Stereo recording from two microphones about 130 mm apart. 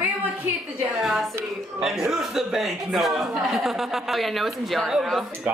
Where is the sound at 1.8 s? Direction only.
5° right (ahead or behind).